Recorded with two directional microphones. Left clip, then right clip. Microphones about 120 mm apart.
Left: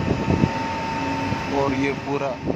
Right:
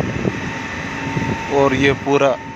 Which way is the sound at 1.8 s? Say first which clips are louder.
Right 10 dB; 45° right (ahead or behind).